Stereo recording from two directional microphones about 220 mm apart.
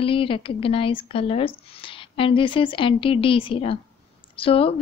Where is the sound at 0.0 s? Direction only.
25° left (ahead or behind).